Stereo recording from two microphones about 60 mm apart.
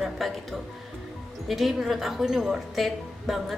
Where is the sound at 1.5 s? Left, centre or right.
Centre.